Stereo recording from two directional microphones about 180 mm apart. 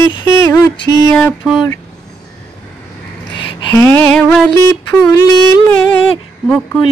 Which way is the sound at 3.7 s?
15° left (ahead or behind).